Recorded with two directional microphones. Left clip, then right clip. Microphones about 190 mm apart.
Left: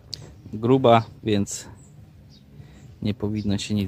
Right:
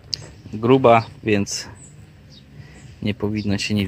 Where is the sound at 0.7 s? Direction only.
15° left (ahead or behind).